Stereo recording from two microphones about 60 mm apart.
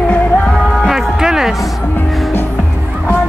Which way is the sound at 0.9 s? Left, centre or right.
Centre.